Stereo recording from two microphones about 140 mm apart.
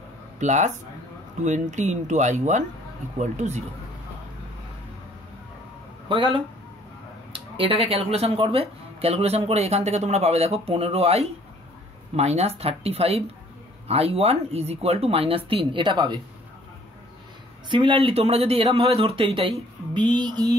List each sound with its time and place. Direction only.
0.4 s speech: 60° right (ahead or behind)
6.0 s music: 35° right (ahead or behind)
7.3 s speech: 40° right (ahead or behind)
17.6 s speech: 35° right (ahead or behind)
20.1 s music: 30° right (ahead or behind)